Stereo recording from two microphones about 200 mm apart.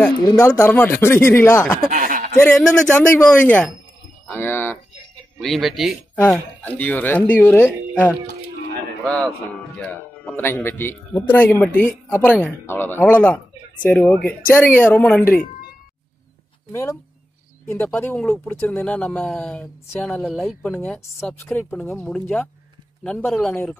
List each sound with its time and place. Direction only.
0.0 s speech: 10° left (ahead or behind)
1.9 s a sound: 40° right (ahead or behind)
2.3 s speech: 10° left (ahead or behind)
5.4 s speech: centre (ahead or behind)
17.6 s speech: 10° left (ahead or behind)